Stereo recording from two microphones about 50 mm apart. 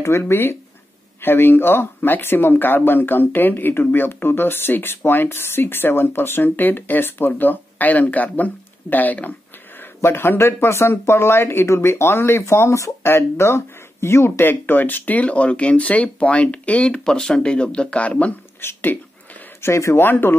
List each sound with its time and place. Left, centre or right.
0.2 s speech: left
10.0 s speech: left
13.1 s speech: left
14.4 s speech: left
18.6 s speech: left
19.6 s speech: left
20.0 s speech: left